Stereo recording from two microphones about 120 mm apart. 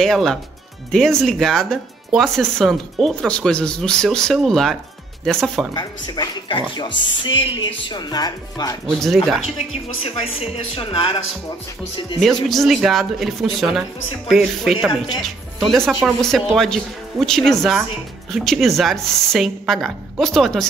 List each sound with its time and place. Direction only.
0.0 s speech: centre (ahead or behind)
5.8 s speech: 35° left (ahead or behind)
8.9 s speech: centre (ahead or behind)
10.0 s speech: 55° left (ahead or behind)
12.2 s speech: centre (ahead or behind)
16.2 s speech: 5° left (ahead or behind)